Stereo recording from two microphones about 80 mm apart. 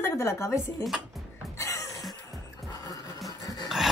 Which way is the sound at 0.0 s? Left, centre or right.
Left.